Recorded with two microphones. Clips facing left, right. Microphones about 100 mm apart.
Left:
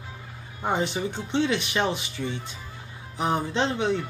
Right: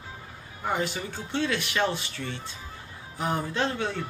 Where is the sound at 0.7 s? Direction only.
20° left (ahead or behind).